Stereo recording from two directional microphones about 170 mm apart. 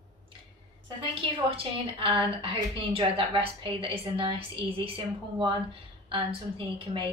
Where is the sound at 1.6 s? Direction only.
30° right (ahead or behind).